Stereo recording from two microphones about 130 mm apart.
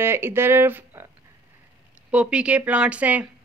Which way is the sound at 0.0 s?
20° right (ahead or behind).